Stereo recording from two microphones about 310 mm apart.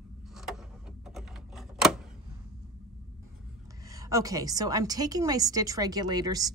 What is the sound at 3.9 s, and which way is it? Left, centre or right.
A woman's voice, centre.